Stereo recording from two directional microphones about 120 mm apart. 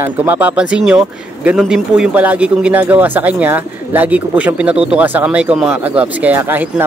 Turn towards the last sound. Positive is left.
turn(degrees=-15)  # may be behind; listen again after turning